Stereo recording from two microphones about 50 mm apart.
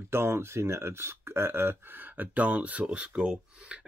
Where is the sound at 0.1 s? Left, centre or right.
Right.